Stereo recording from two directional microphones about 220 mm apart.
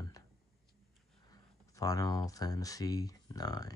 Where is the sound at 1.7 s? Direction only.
15° left (ahead or behind).